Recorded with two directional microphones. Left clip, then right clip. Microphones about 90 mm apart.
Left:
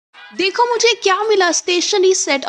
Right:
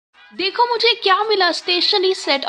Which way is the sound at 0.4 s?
60° left (ahead or behind).